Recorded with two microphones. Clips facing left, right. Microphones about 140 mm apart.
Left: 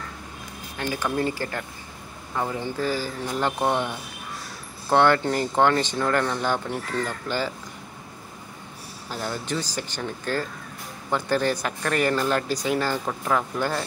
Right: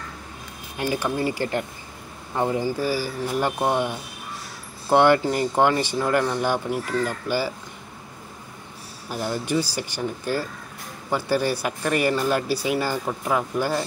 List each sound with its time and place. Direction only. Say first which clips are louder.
0.7 s speech: right 2 dB; 10° right (ahead or behind)
2.6 s speech: right 2 dB; 10° right (ahead or behind)
9.1 s speech: right 4 dB; 10° right (ahead or behind)